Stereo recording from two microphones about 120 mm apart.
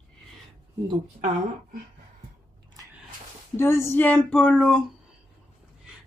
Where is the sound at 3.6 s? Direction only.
20° left (ahead or behind).